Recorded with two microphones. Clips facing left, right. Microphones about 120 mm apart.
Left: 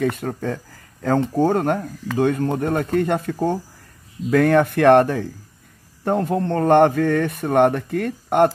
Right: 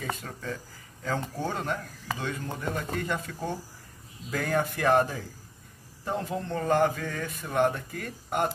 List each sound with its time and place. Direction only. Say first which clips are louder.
0.0 s a man's voice: left 13 dB; 55° left (ahead or behind)
4.3 s a man's voice: left 13 dB; 65° left (ahead or behind)